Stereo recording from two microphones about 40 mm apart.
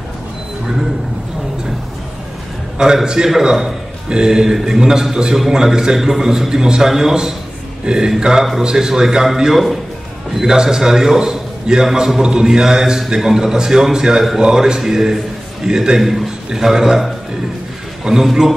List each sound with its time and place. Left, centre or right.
2.8 s a man's voice: centre
16.0 s a man's voice: centre
18.2 s a man's voice: centre